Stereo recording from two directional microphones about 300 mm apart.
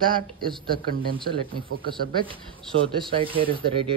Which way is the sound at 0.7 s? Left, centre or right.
Right.